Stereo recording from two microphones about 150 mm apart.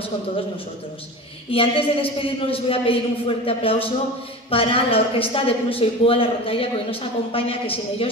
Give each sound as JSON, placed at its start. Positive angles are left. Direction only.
{"t": 1.5, "sound": "a woman's voice", "side_deg": 40}